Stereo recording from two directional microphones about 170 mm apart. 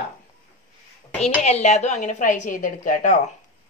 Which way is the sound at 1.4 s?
40° left (ahead or behind).